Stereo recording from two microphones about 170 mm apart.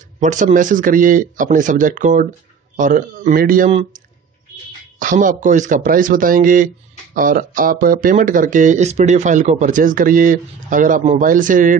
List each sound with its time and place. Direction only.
0.2 s speech: 45° right (ahead or behind)
4.9 s speech: 50° right (ahead or behind)